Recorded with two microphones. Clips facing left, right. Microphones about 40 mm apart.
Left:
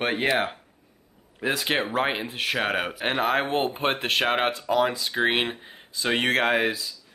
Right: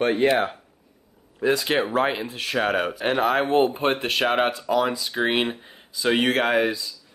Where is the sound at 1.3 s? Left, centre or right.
Centre.